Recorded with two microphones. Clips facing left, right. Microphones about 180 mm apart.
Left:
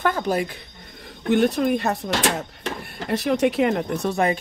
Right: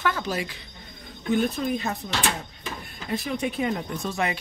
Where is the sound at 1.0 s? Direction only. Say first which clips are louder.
Left 5 dB; 75° left (ahead or behind).